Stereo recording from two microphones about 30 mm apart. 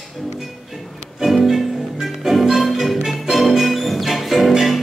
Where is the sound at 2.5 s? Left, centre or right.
Centre.